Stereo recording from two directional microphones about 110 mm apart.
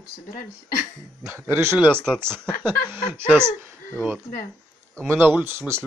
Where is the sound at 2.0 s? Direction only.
5° left (ahead or behind).